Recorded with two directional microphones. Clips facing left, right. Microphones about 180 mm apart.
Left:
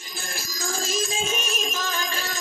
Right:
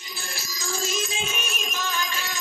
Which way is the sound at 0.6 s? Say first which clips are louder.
Even; 90° left.